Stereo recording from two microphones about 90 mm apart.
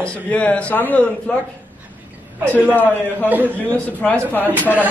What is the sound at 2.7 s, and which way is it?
Speech, 20° left (ahead or behind).